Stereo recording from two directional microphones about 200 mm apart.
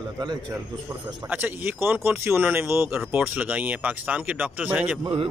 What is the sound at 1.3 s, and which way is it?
Speech, 10° right (ahead or behind).